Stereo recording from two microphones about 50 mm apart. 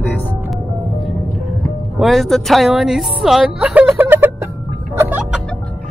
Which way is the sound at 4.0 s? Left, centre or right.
Right.